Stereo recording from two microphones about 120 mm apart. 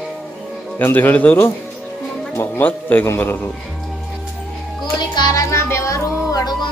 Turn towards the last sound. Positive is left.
turn(degrees=35)  # may be behind; listen again after turning